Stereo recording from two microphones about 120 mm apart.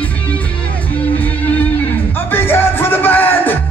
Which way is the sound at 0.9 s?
15° left (ahead or behind).